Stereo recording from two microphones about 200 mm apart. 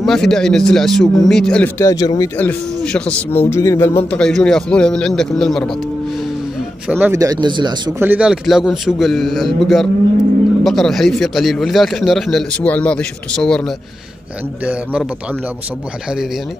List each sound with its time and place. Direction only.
0.0 s a man's voice: centre (ahead or behind)
6.9 s speech: 10° right (ahead or behind)
8.0 s a man's voice: 5° right (ahead or behind)